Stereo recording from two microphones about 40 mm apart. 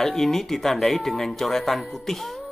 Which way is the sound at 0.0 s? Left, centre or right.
Centre.